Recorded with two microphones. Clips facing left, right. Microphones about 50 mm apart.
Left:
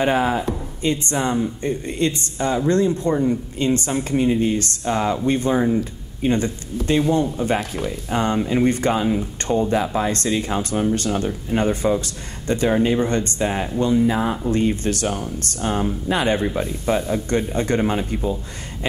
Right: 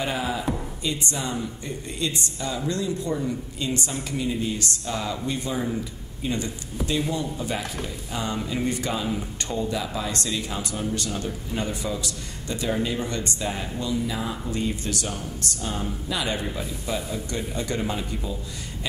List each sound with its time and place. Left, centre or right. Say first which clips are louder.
0.0 s speech: left 8 dB; left